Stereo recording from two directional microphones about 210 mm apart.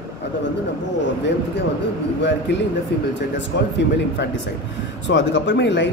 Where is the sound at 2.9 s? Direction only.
55° left (ahead or behind).